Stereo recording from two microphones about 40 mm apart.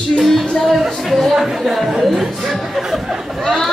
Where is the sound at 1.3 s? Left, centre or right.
Centre.